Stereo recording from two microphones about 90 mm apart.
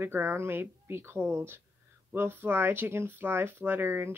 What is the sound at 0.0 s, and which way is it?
Speech, 25° right (ahead or behind).